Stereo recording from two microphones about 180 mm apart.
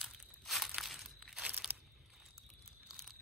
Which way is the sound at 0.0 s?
Centre (ahead or behind).